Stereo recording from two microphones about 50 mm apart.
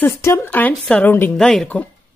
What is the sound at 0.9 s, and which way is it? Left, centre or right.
Speech, left.